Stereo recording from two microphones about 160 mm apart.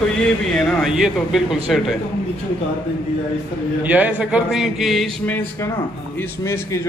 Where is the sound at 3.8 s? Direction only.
10° right (ahead or behind).